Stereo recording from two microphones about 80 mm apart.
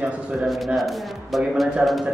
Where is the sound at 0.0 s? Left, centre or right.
Centre.